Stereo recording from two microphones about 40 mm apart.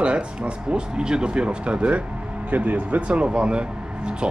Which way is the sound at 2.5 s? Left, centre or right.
Right.